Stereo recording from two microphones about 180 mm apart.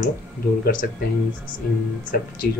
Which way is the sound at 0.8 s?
55° left (ahead or behind).